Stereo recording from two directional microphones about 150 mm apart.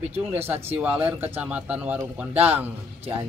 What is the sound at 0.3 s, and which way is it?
Speech, 15° right (ahead or behind).